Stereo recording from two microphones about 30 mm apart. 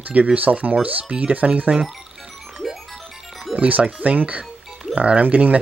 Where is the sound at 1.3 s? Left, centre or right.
Right.